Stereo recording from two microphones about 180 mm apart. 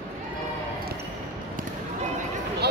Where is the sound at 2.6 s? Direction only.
65° right (ahead or behind).